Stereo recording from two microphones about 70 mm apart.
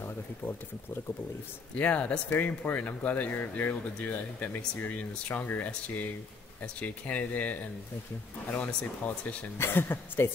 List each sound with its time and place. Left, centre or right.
1.8 s speech: centre
9.6 s speech: left